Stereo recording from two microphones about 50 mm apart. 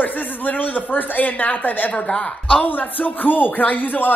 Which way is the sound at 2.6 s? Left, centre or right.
Left.